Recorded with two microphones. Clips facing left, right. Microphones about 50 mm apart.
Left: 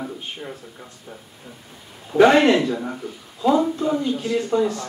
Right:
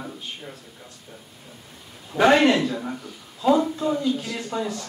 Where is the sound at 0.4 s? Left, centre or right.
Left.